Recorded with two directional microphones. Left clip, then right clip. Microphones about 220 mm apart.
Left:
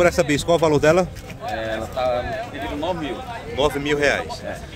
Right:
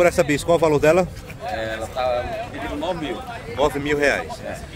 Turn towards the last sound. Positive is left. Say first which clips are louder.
# even
turn(degrees=0)  # may be behind; listen again after turning